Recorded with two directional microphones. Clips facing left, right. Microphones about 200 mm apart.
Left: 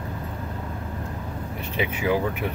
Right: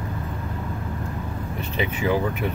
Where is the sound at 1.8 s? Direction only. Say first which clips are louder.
Even; 10° left (ahead or behind).